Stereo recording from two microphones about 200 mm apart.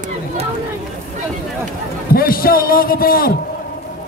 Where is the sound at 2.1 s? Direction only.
45° left (ahead or behind).